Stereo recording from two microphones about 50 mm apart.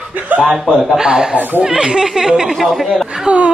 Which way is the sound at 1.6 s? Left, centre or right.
Centre.